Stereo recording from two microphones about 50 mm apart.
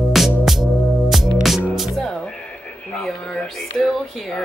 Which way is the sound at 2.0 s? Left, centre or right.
Centre.